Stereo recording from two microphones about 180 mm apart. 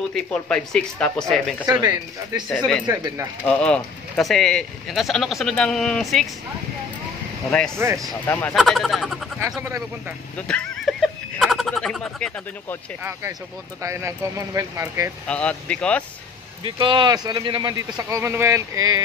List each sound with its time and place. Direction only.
0.1 s speech: 5° left (ahead or behind)
1.7 s speech: 25° right (ahead or behind)
3.4 s speech: 5° left (ahead or behind)
7.5 s speech: 5° left (ahead or behind)
7.8 s speech: 15° right (ahead or behind)
8.3 s speech: 10° left (ahead or behind)
8.5 s speech: centre (ahead or behind)
9.6 s speech: 15° right (ahead or behind)
10.3 s speech: 5° left (ahead or behind)
13.8 s speech: 15° right (ahead or behind)
15.2 s speech: 5° left (ahead or behind)
16.6 s speech: 25° right (ahead or behind)